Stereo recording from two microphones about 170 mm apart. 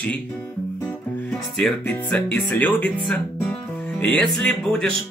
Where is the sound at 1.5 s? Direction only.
5° left (ahead or behind).